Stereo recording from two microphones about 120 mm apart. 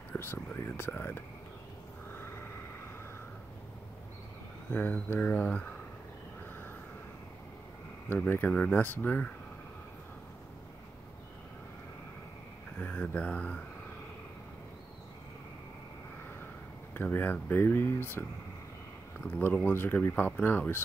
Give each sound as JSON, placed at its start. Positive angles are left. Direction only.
{"t": 0.1, "sound": "speech", "side_deg": 15}
{"t": 4.7, "sound": "speech", "side_deg": 15}
{"t": 8.1, "sound": "speech", "side_deg": 15}
{"t": 12.7, "sound": "speech", "side_deg": 10}
{"t": 16.9, "sound": "speech", "side_deg": 15}
{"t": 19.2, "sound": "speech", "side_deg": 10}